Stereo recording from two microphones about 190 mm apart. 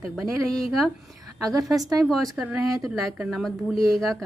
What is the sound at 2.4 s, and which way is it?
A woman's voice, 5° right (ahead or behind).